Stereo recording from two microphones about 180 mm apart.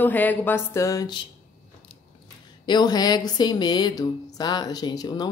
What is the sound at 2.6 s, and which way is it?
Speech, 25° left (ahead or behind).